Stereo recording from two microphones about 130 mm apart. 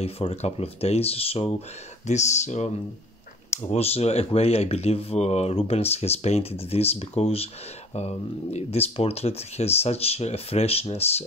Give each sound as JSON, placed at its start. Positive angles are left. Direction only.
{"t": 0.0, "sound": "speech", "side_deg": 50}
{"t": 2.0, "sound": "speech", "side_deg": 65}